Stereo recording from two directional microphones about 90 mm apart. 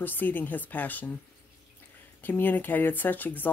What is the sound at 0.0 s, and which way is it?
Speech, 20° left (ahead or behind).